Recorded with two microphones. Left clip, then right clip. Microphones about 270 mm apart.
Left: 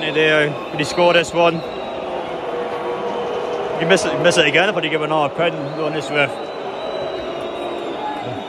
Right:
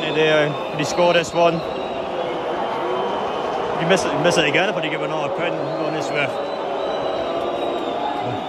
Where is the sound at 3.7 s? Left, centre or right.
Centre.